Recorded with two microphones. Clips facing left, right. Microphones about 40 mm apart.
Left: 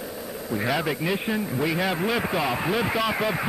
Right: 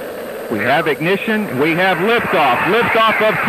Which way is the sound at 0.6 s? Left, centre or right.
Right.